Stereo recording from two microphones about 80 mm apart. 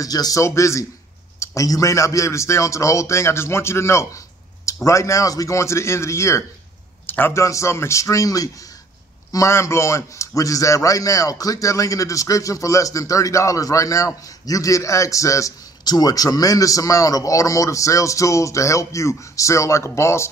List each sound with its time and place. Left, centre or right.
0.0 s a man's voice: left
0.4 s a man's voice: left
7.4 s a man's voice: left
15.8 s a man's voice: left